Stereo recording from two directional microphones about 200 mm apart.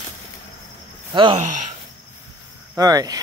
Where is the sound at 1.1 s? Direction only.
25° right (ahead or behind).